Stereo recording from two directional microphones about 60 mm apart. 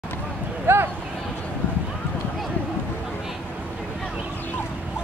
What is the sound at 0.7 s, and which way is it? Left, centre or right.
Speech, right.